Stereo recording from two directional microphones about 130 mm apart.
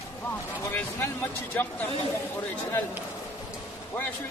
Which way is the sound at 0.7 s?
15° left (ahead or behind).